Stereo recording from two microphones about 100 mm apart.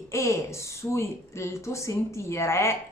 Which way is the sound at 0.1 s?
30° left (ahead or behind).